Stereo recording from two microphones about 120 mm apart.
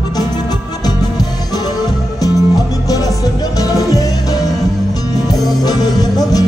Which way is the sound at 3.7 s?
30° left (ahead or behind).